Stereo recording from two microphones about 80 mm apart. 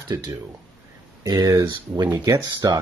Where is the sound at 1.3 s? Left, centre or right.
Right.